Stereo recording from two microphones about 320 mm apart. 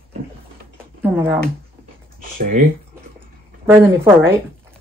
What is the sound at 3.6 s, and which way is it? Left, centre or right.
Speech, centre.